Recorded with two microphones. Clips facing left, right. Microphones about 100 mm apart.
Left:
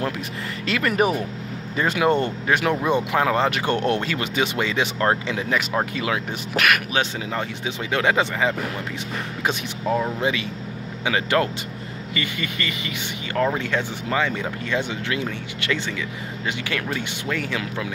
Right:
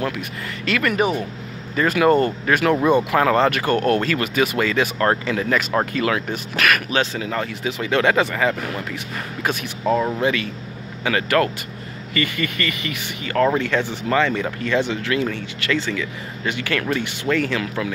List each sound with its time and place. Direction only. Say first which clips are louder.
0.7 s speech: right 1 dB; 30° left (ahead or behind); by 8.5 s 15° left (ahead or behind)
9.9 s speech: right 3 dB; 15° left (ahead or behind)